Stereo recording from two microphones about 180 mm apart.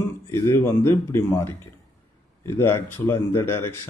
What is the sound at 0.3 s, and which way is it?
Speech, 15° left (ahead or behind).